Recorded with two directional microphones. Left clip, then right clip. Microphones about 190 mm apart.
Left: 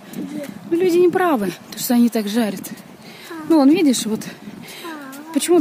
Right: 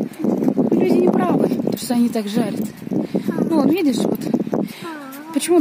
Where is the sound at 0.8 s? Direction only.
5° left (ahead or behind).